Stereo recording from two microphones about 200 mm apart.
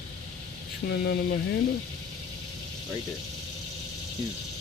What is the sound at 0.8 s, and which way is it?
Speech, 55° left (ahead or behind).